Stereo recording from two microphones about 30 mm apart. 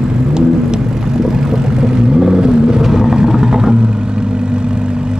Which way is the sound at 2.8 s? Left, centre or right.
Centre.